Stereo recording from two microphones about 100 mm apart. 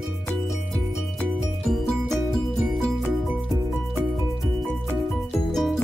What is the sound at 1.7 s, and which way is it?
Music, 5° left (ahead or behind).